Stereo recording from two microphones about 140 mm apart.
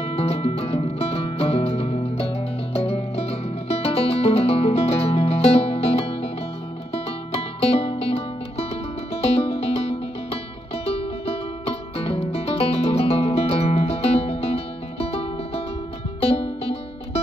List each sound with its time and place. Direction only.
0.0 s music: 45° left (ahead or behind)
7.6 s music: 45° left (ahead or behind)